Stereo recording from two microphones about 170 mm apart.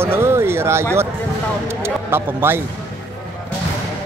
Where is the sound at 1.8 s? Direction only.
15° right (ahead or behind).